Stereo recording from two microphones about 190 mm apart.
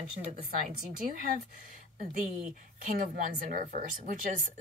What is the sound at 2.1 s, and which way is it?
Speech, 45° right (ahead or behind).